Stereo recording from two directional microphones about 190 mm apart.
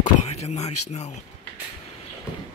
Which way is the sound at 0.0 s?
35° left (ahead or behind).